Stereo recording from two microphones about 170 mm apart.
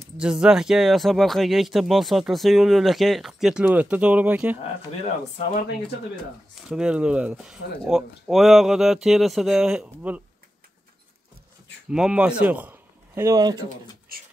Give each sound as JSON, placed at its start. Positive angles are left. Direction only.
{"t": 0.2, "sound": "speech", "side_deg": -5}
{"t": 4.6, "sound": "speech", "side_deg": 40}
{"t": 6.7, "sound": "speech", "side_deg": -5}
{"t": 11.9, "sound": "speech", "side_deg": -5}